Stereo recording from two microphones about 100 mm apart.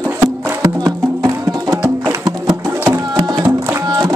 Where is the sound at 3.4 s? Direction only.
30° right (ahead or behind).